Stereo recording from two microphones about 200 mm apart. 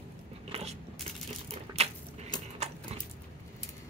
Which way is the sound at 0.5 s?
30° right (ahead or behind).